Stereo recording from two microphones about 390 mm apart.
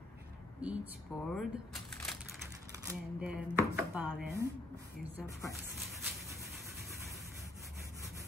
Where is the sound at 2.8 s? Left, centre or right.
Centre.